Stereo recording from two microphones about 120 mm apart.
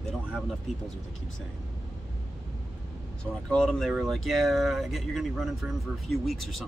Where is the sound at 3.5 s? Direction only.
5° left (ahead or behind).